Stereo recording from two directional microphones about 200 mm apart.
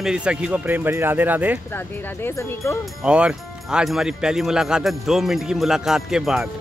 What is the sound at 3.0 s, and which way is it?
Speech, 5° right (ahead or behind).